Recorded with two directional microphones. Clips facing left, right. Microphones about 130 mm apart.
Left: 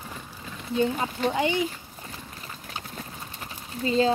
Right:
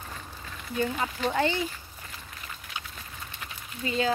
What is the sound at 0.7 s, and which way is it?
Speech, 25° left (ahead or behind).